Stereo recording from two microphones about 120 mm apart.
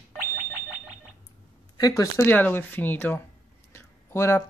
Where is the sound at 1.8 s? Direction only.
30° left (ahead or behind).